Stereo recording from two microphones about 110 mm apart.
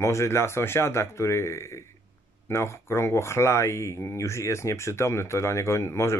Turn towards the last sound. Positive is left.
turn(degrees=25)  # may be behind; listen again after turning